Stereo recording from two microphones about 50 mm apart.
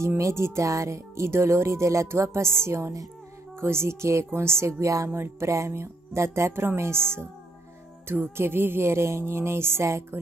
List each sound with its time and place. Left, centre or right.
0.2 s speech: right
3.5 s music: right